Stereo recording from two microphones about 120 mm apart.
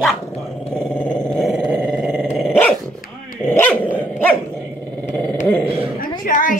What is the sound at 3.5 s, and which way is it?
Speech, 20° left (ahead or behind).